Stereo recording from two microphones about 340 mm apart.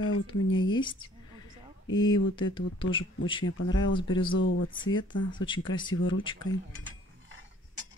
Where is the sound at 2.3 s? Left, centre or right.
Centre.